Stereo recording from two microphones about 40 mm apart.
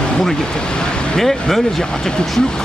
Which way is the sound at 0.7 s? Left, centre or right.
Left.